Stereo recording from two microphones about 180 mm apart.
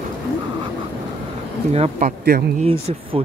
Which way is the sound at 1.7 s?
40° right (ahead or behind).